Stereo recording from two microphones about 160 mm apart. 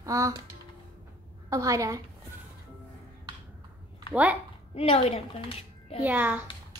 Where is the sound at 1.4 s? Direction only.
20° right (ahead or behind).